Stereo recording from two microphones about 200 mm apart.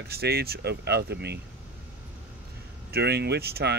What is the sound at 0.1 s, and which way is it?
Speech, 50° right (ahead or behind).